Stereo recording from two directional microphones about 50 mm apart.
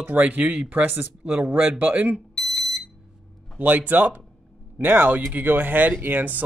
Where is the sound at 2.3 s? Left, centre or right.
Centre.